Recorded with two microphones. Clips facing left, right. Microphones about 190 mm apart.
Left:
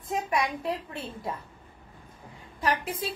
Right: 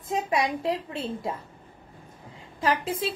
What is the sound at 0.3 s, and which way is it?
A woman's voice, 25° right (ahead or behind).